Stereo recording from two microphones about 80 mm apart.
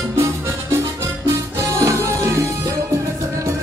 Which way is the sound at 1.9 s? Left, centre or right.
Right.